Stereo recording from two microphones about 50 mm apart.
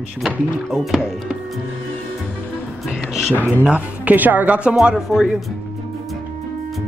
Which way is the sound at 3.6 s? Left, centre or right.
Right.